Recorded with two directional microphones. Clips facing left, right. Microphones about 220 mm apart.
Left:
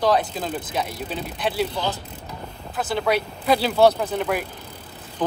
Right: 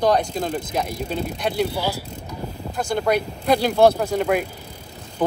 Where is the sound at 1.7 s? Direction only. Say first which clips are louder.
Right 2 dB; 10° right (ahead or behind).